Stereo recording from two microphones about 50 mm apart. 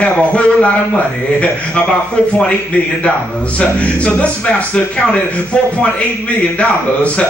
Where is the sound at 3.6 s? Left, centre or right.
Left.